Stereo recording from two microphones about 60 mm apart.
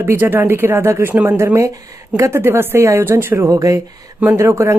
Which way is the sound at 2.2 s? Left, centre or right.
Right.